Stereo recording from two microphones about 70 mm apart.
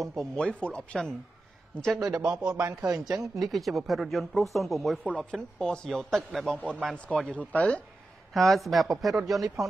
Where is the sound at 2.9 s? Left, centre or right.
Right.